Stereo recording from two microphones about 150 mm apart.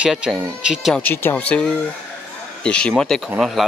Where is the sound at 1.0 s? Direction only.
15° left (ahead or behind); by 3.6 s 5° right (ahead or behind).